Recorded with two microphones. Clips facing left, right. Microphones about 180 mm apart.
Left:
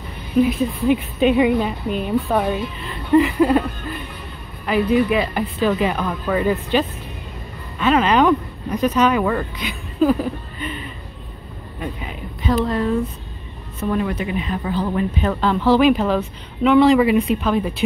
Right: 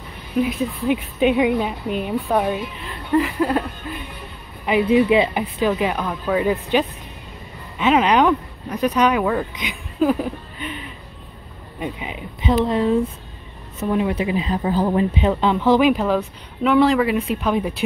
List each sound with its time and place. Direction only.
0.4 s a woman's voice: 5° right (ahead or behind)
3.1 s a woman's voice: 5° left (ahead or behind)
4.6 s a woman's voice: 20° right (ahead or behind); by 9.5 s 5° right (ahead or behind)
9.6 s a sound: 15° right (ahead or behind)
11.8 s speech: 15° right (ahead or behind)
14.1 s speech: 30° right (ahead or behind)
15.0 s speech: 20° right (ahead or behind)
15.9 s a woman's voice: 5° right (ahead or behind)